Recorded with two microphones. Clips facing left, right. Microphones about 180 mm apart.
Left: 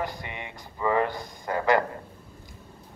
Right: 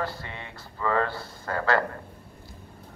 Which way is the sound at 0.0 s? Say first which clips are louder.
Even; 15° left (ahead or behind).